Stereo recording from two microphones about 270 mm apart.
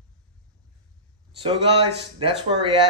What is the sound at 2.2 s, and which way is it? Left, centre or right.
Speech, centre.